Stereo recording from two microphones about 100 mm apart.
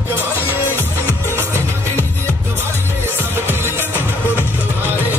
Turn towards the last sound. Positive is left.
turn(degrees=20)  # may be behind; listen again after turning